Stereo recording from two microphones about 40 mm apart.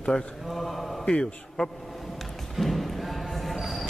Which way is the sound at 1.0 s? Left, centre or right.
Centre.